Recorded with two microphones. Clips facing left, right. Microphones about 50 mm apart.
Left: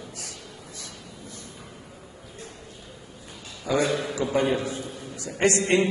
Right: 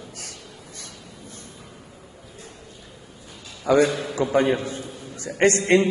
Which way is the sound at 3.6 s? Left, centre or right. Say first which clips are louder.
Right 5 dB; right.